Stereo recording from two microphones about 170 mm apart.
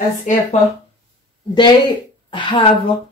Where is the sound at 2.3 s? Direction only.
30° left (ahead or behind).